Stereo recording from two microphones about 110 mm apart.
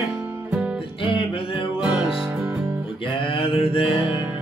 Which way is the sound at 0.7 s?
50° left (ahead or behind).